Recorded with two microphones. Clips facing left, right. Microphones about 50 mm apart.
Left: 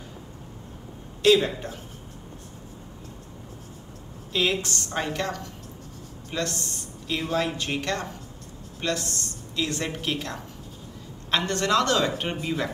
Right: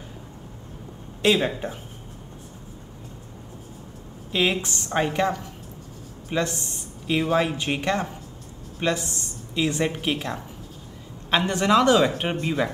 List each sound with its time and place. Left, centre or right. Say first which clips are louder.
1.2 s speech: left 1 dB; right
4.3 s speech: right 2 dB; right